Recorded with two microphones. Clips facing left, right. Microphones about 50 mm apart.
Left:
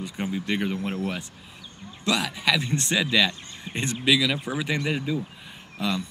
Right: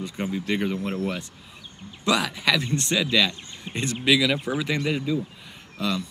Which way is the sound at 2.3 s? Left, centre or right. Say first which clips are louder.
Right 1 dB; centre.